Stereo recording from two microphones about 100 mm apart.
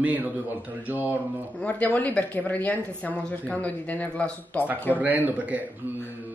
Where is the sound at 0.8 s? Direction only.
20° right (ahead or behind).